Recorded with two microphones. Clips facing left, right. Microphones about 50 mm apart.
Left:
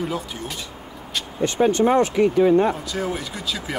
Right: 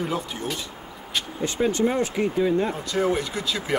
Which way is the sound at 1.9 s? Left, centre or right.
Left.